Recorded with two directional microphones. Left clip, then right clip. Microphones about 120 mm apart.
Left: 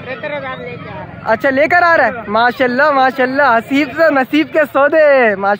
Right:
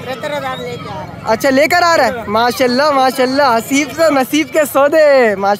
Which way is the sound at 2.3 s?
30° right (ahead or behind).